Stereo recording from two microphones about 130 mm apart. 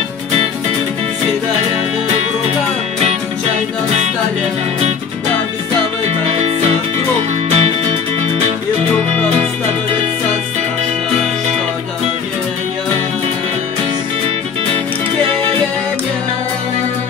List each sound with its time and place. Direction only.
6.0 s music: 55° right (ahead or behind)